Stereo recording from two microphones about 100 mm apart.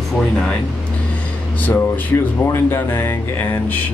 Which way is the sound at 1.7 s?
20° left (ahead or behind).